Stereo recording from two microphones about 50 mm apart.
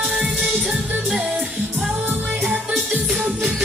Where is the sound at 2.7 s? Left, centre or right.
Right.